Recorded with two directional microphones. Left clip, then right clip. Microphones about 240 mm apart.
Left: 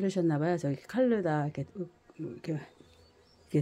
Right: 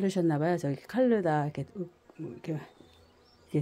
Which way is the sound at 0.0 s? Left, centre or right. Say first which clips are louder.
Right 1 dB; centre.